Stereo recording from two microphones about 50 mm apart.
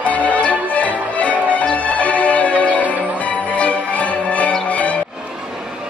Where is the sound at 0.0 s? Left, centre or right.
Left.